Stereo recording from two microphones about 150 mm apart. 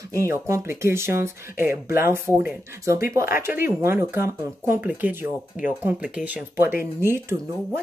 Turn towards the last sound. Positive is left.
turn(degrees=-15)  # may be behind; listen again after turning